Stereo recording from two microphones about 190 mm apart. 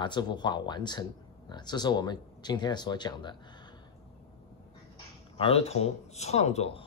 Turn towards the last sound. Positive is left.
turn(degrees=35)  # may be behind; listen again after turning